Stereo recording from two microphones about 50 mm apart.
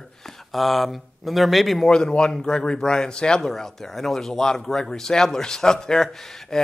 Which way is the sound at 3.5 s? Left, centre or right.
Centre.